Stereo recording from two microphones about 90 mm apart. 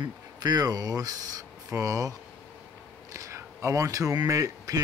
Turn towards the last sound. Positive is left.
turn(degrees=-40)  # may be behind; listen again after turning